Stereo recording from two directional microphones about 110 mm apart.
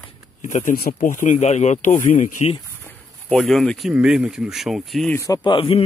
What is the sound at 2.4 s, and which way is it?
Speech, 70° left (ahead or behind).